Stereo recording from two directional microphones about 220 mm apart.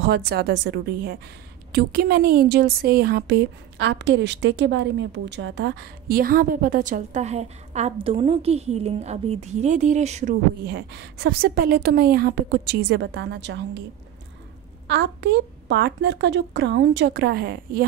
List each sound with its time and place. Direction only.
0.0 s a woman's voice: 50° right (ahead or behind); by 10.3 s 30° right (ahead or behind)
10.7 s a woman's voice: 50° right (ahead or behind)
14.9 s a woman's voice: 50° right (ahead or behind)